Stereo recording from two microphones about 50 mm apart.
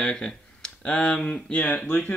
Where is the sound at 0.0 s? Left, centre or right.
Centre.